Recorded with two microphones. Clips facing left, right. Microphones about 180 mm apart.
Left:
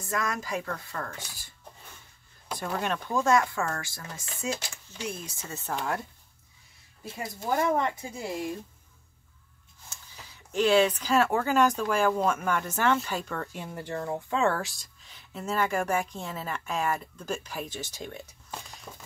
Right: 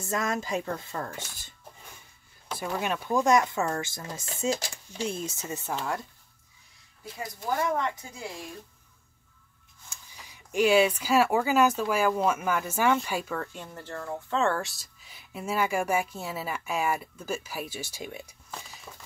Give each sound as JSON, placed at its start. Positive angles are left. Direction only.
{"t": 0.0, "sound": "speech", "side_deg": -25}
{"t": 2.5, "sound": "speech", "side_deg": -5}
{"t": 7.1, "sound": "speech", "side_deg": 25}
{"t": 9.8, "sound": "speech", "side_deg": -15}
{"t": 18.5, "sound": "music", "side_deg": 0}